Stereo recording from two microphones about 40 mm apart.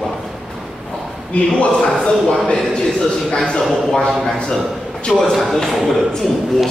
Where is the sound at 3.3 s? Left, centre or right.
Left.